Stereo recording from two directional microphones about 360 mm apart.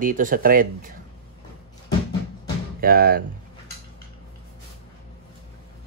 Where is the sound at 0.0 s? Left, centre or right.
Right.